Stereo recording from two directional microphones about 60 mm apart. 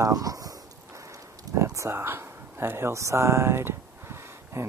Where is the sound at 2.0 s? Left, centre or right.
Right.